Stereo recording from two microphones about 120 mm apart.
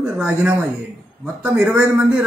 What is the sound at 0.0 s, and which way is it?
A man's voice, 10° right (ahead or behind).